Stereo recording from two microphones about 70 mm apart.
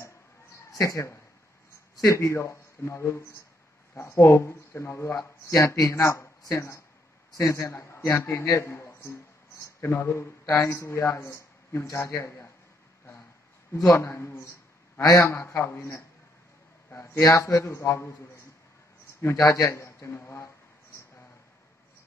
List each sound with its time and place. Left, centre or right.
0.7 s speech: left
7.3 s a man's voice: left
7.7 s speech: left
8.5 s a sound: left
10.4 s speech: left
13.8 s a man's voice: left
15.0 s a man's voice: left
17.2 s a man's voice: left
19.3 s a man's voice: left